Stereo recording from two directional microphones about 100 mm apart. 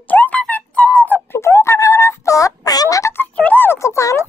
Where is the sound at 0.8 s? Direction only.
15° left (ahead or behind).